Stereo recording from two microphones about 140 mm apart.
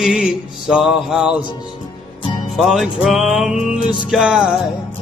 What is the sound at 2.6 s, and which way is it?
Mantra, centre (ahead or behind).